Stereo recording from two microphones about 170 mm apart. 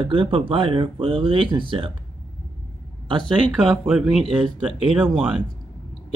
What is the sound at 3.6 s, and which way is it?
Speech, 5° right (ahead or behind).